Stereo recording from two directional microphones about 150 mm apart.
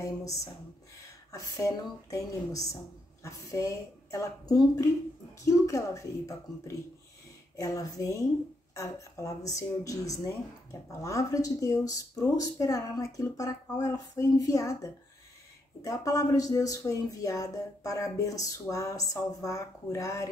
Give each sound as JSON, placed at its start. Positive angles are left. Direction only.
{"t": 0.0, "sound": "speech", "side_deg": 20}